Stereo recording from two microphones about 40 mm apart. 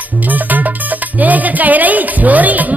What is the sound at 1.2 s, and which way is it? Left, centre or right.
Speech, right.